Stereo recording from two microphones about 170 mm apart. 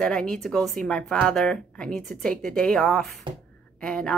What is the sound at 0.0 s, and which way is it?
Speech, 5° left (ahead or behind).